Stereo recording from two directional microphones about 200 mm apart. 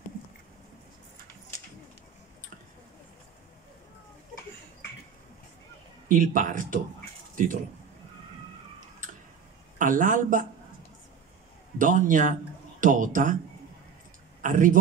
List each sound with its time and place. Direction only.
6.0 s speech: 40° right (ahead or behind)
9.8 s speech: 40° right (ahead or behind)
11.8 s speech: 40° right (ahead or behind)
14.4 s speech: 40° right (ahead or behind)